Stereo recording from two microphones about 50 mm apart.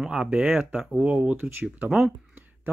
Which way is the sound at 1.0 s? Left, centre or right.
Right.